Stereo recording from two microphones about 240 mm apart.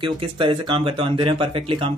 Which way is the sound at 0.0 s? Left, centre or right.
Right.